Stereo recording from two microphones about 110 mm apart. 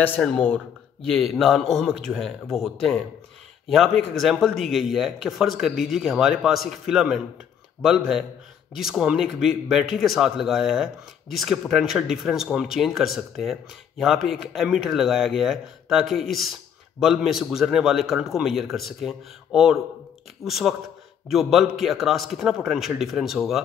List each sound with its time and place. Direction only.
0.2 s speech: 10° left (ahead or behind)
8.7 s speech: 5° right (ahead or behind)